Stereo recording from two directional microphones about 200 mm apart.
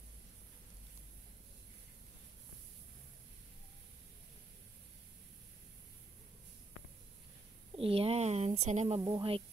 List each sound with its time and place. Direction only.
7.7 s speech: 30° right (ahead or behind)
9.0 s speech: 25° right (ahead or behind)